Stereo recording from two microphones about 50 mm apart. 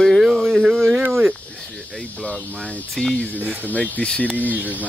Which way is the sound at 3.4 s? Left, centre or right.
Right.